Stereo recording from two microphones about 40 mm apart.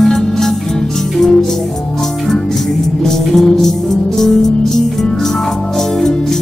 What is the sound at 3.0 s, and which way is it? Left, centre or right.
Music, centre.